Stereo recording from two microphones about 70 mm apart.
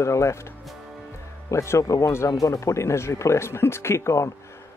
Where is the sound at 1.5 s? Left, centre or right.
Left.